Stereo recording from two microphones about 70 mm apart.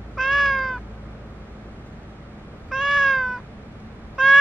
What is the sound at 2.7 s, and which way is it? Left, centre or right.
Cat, centre.